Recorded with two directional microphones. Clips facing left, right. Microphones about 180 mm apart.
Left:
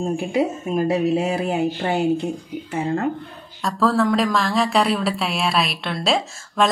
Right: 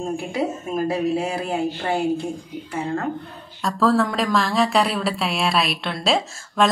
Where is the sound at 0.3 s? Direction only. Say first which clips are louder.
Left 5 dB; 20° left (ahead or behind).